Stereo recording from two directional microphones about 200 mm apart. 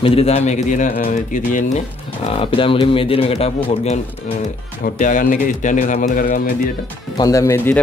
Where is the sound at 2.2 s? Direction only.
25° left (ahead or behind); by 6.5 s 45° left (ahead or behind).